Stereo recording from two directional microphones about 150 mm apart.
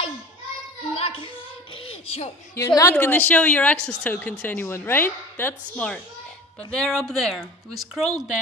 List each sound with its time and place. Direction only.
0.9 s a sound: 40° left (ahead or behind)
1.9 s speech: 45° left (ahead or behind)
2.5 s a woman's voice: 20° left (ahead or behind); by 8.2 s centre (ahead or behind)